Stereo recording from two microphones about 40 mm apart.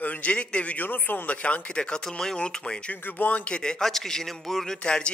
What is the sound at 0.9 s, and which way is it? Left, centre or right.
Speech, left.